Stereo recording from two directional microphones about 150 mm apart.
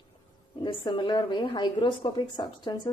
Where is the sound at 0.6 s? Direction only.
35° left (ahead or behind).